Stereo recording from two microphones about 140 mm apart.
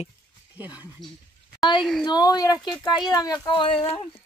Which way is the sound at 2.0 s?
30° left (ahead or behind).